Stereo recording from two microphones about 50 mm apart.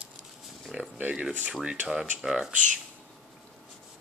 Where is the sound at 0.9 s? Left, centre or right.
Right.